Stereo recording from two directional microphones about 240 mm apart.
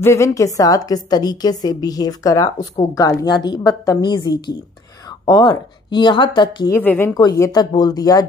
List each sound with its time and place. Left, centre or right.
0.0 s a woman's voice: centre